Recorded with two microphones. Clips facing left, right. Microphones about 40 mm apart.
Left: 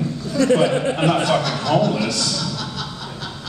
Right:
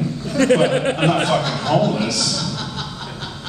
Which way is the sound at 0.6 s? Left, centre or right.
Right.